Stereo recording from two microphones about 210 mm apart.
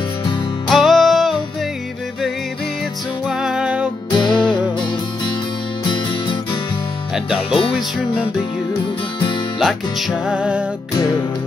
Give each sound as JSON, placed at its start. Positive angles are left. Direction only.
{"t": 0.7, "sound": "music", "side_deg": 0}
{"t": 3.3, "sound": "music", "side_deg": -5}
{"t": 4.1, "sound": "music", "side_deg": 20}
{"t": 9.6, "sound": "music", "side_deg": 0}